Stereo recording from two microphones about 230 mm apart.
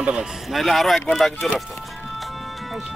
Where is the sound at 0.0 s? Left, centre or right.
Centre.